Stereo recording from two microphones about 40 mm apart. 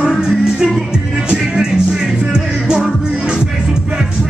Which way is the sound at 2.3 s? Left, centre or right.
Right.